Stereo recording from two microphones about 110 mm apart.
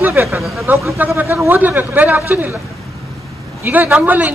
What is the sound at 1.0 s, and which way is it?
A man's voice, 20° right (ahead or behind).